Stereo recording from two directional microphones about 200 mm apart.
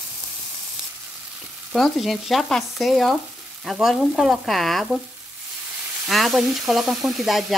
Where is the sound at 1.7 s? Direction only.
Centre (ahead or behind).